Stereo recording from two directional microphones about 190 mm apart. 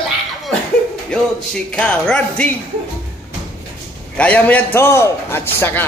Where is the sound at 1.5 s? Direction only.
5° left (ahead or behind).